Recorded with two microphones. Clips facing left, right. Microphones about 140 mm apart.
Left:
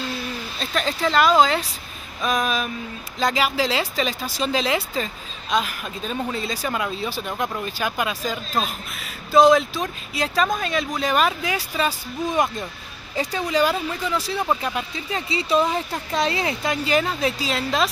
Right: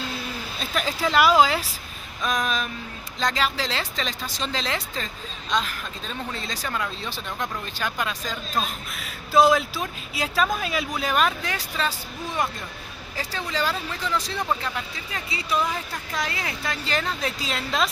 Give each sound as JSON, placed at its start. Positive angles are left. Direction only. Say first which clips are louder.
{"t": 0.6, "sound": "speech", "louder": "left 2 dB", "side_deg": -10}
{"t": 2.2, "sound": "speech", "louder": "left 3 dB", "side_deg": 5}
{"t": 14.7, "sound": "speech", "louder": "left 5 dB", "side_deg": 20}